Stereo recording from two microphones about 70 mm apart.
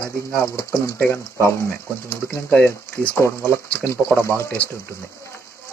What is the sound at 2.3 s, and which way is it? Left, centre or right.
Speech, left.